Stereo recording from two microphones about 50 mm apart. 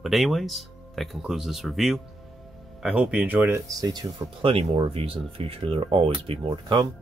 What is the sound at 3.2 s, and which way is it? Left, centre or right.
Speech, right.